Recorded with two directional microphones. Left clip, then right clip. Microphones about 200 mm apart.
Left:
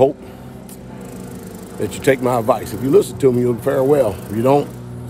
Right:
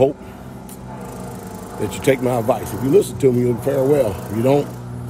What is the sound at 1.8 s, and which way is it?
Speech, 15° left (ahead or behind).